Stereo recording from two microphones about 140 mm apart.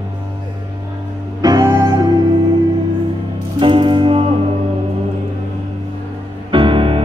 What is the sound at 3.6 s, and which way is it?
Music, 35° right (ahead or behind).